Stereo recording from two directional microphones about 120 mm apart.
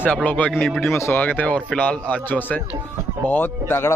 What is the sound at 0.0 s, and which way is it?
Speech, 10° left (ahead or behind).